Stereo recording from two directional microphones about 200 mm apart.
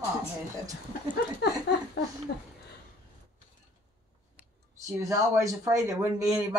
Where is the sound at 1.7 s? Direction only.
55° left (ahead or behind).